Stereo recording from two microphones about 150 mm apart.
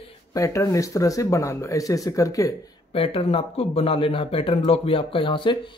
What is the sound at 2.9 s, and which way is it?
Speech, 40° left (ahead or behind).